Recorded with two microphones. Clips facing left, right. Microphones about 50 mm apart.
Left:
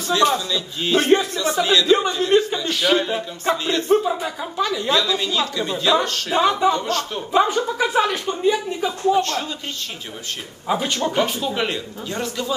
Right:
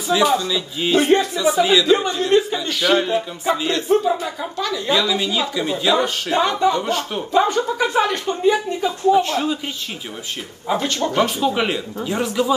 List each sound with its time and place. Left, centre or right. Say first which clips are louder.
0.1 s a man's voice: right 1 dB; centre
4.8 s a man's voice: right 5 dB; centre
6.3 s speech: even; centre
6.7 s a man's voice: right 1 dB; centre
7.3 s speech: right 1 dB; centre
10.7 s speech: right 1 dB; centre
11.1 s a man's voice: right 6 dB; centre